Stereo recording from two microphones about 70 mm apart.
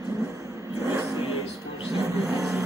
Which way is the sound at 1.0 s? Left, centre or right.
Right.